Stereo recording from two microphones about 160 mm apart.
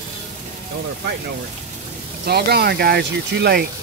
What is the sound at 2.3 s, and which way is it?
Speech, 85° right.